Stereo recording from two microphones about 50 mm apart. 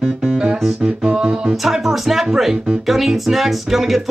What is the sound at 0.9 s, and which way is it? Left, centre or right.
Music, centre.